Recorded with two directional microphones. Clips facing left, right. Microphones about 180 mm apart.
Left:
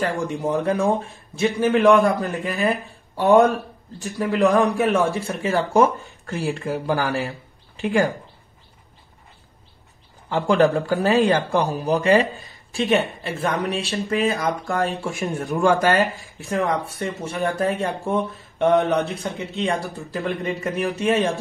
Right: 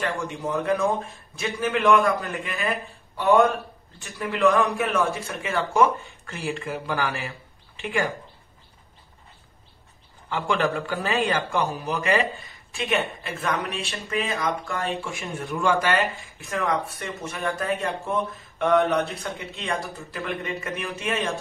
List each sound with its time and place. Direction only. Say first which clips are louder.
0.0 s speech: left 5 dB; 40° left (ahead or behind)
10.4 s speech: left 7 dB; 40° left (ahead or behind)
18.7 s speech: left 2 dB; 20° left (ahead or behind)
19.2 s speech: left 6 dB; 30° left (ahead or behind)